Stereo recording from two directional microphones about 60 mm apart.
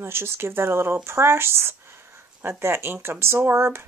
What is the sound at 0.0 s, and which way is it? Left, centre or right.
Speech, right.